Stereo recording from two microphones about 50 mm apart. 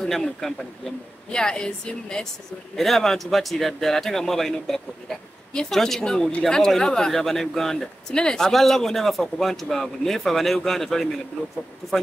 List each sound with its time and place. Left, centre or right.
0.0 s speech: centre
2.7 s speech: centre